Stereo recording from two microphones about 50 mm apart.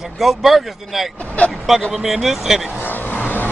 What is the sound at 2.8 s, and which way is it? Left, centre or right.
Vehicle, left.